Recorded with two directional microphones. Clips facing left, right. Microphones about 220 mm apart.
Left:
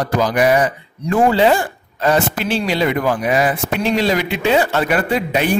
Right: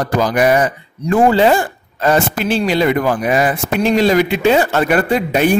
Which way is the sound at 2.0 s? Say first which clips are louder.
Right 2 dB; 45° right (ahead or behind).